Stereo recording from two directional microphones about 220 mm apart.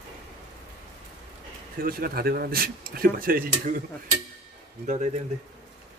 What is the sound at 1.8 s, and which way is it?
Speech, 45° right (ahead or behind).